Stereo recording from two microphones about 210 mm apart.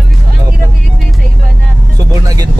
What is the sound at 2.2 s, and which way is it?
Music, 20° right (ahead or behind).